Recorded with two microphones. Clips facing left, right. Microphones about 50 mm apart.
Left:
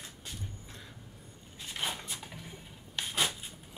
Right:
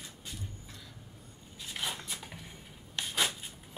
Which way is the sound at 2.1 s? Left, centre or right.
Centre.